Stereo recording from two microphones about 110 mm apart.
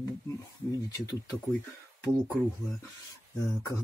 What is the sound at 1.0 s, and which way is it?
Speech, 30° left (ahead or behind).